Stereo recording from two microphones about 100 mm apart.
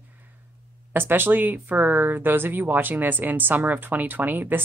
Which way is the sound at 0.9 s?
20° right (ahead or behind).